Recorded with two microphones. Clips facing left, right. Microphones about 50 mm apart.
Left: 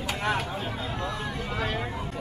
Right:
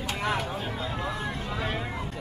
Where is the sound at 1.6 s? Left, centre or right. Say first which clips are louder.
Left 1 dB; centre.